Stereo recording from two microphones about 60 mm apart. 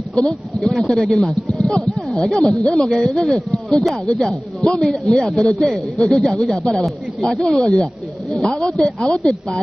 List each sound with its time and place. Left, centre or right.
0.6 s a man's voice: centre
7.8 s a sound: centre
8.7 s speech: centre